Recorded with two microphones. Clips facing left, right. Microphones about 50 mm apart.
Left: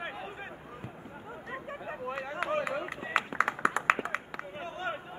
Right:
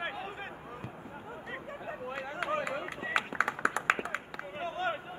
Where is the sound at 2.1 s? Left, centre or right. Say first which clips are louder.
Left 2 dB; left.